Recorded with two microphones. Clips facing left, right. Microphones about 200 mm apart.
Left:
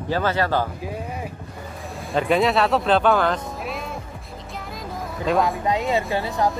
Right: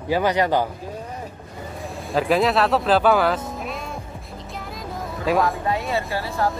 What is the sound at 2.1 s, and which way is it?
Speech, centre (ahead or behind).